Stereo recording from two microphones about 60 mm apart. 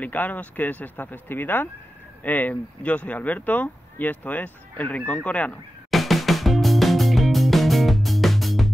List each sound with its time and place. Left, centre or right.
0.0 s speech: left
5.9 s music: centre